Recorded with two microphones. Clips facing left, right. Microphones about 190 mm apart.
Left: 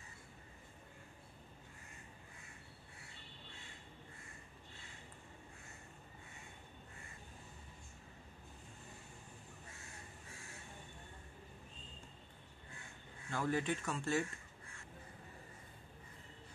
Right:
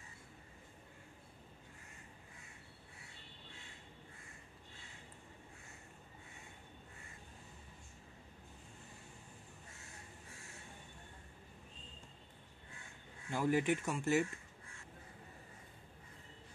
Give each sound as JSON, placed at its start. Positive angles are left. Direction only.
{"t": 13.3, "sound": "speech", "side_deg": -15}